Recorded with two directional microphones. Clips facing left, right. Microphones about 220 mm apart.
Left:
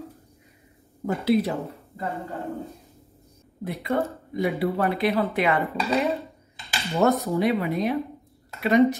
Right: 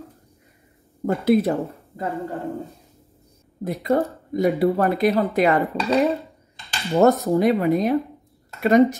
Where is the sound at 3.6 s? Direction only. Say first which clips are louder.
Right 5 dB; 45° right (ahead or behind).